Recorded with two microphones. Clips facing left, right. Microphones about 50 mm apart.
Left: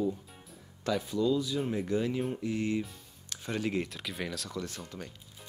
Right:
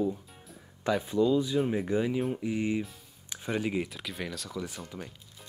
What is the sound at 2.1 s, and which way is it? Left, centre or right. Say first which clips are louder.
Speech: right 2 dB; centre.